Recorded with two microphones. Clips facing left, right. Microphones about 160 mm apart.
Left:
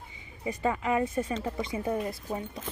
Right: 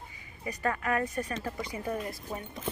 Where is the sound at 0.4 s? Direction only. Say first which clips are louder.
Left 3 dB; 20° left (ahead or behind).